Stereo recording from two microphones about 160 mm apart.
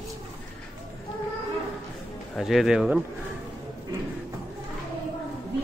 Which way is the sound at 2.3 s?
Centre (ahead or behind).